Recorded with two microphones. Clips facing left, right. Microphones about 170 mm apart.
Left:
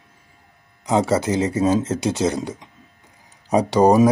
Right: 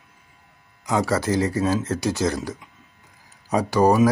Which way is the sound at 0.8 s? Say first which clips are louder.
Left 3 dB; 20° left (ahead or behind).